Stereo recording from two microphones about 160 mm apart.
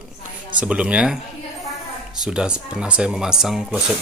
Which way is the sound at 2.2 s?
5° right (ahead or behind).